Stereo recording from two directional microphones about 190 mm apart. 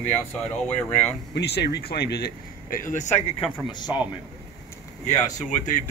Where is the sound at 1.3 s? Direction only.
60° left (ahead or behind); by 3.4 s 35° left (ahead or behind).